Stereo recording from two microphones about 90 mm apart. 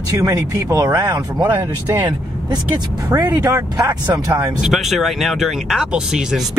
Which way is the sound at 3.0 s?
40° right (ahead or behind).